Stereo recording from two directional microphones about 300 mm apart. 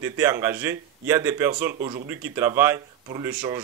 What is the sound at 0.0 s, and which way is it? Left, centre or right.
A man's voice, centre.